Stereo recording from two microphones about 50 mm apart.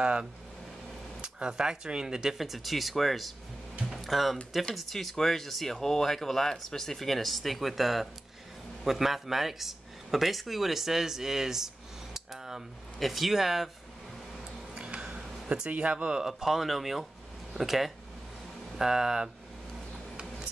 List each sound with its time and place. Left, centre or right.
0.0 s speech: centre
14.8 s a sound: centre
15.7 s speech: right
16.3 s speech: centre